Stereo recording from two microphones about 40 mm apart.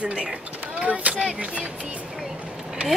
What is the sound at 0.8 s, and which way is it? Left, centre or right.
Speech, right.